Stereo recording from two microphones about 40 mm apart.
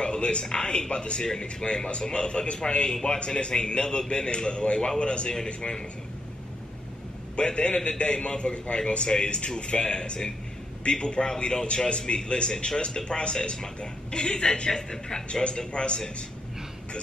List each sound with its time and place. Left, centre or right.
0.0 s speech: left
7.3 s speech: left